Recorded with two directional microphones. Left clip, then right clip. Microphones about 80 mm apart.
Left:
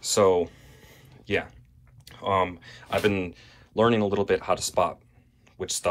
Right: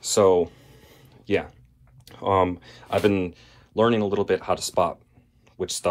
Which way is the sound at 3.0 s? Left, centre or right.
Right.